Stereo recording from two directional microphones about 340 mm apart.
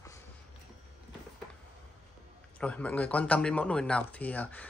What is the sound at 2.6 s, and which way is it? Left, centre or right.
Speech, centre.